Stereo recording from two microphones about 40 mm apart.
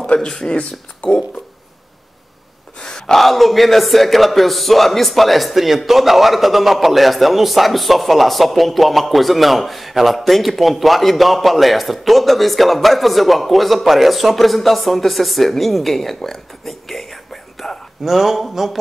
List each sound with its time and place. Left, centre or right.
0.0 s speech: left
0.6 s speech: left
2.8 s gasp: centre
3.2 s a man's voice: centre
18.0 s a man's voice: centre